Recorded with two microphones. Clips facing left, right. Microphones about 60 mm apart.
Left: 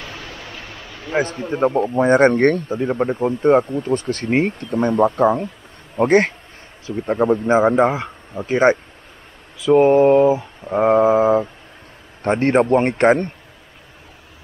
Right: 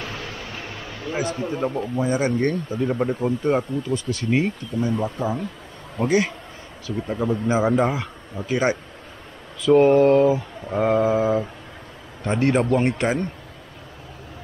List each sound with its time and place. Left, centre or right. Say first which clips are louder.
1.1 s speech: left 6 dB; left
2.7 s a man's voice: left 3 dB; left
4.6 s a man's voice: left 7 dB; left
9.6 s a man's voice: left 2 dB; centre; by 13.3 s left